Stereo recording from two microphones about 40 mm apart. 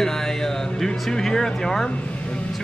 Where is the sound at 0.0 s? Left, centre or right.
Centre.